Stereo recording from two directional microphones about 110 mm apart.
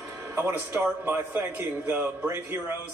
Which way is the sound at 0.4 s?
20° right (ahead or behind).